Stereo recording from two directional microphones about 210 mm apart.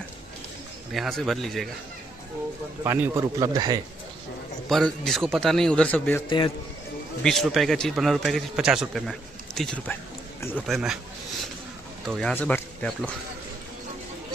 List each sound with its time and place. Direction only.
0.9 s a man's voice: centre (ahead or behind)
2.8 s a man's voice: 15° right (ahead or behind)
4.6 s a man's voice: centre (ahead or behind)
6.2 s a man's voice: 25° left (ahead or behind)
7.2 s a man's voice: centre (ahead or behind)
12.1 s a man's voice: 5° left (ahead or behind)